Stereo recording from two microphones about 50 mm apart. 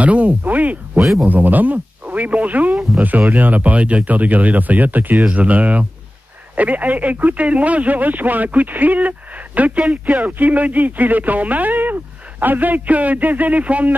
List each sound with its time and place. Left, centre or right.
0.0 s speech: right